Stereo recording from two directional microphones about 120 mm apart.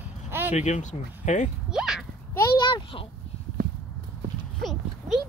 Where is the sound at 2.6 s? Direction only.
40° left (ahead or behind).